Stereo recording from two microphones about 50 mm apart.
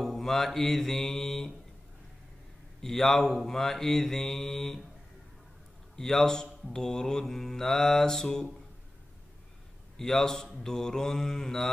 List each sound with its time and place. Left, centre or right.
0.0 s mantra: centre
2.8 s mantra: centre
5.9 s mantra: centre
9.9 s mantra: centre